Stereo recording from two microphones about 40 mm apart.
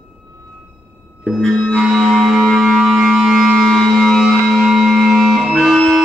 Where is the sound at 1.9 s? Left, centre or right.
Centre.